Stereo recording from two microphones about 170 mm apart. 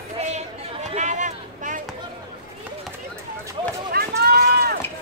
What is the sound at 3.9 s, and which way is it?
Run, 65° right (ahead or behind).